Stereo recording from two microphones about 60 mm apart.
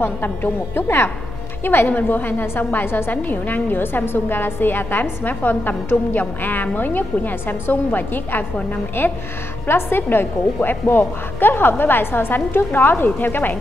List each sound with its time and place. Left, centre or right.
0.0 s a woman's voice: left